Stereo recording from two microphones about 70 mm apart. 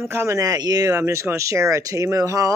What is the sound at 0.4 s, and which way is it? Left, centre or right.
Speech, right.